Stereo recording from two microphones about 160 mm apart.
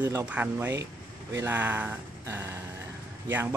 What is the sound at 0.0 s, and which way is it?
Speech, 20° right (ahead or behind).